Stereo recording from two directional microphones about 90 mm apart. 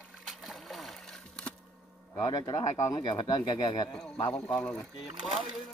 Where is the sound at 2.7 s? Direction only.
35° left (ahead or behind).